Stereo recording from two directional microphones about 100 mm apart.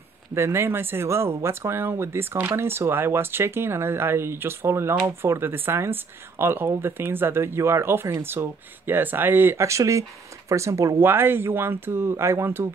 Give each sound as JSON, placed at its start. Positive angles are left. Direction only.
{"t": 0.3, "sound": "speech", "side_deg": -25}